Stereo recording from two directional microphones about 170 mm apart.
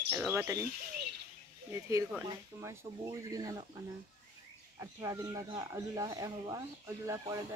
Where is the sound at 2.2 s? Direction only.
15° right (ahead or behind).